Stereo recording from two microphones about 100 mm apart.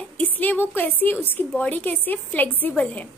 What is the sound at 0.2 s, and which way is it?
A woman's voice, 15° left (ahead or behind).